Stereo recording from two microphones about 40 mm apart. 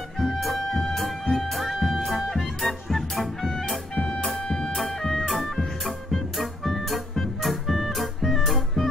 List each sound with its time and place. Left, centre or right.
0.2 s music: centre
3.9 s music: left
4.7 s music: centre